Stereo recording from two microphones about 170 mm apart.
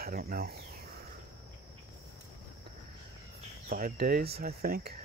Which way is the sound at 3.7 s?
60° right (ahead or behind).